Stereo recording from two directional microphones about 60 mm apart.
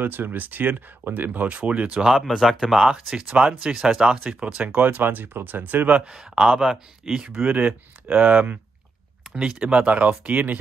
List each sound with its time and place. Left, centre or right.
0.0 s speech: right
2.0 s speech: centre
4.8 s speech: right
9.3 s speech: centre